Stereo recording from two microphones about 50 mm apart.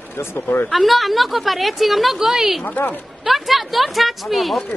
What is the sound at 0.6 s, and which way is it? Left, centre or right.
Speech, centre.